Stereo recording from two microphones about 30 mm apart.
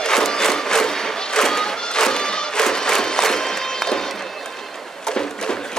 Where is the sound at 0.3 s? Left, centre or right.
Left.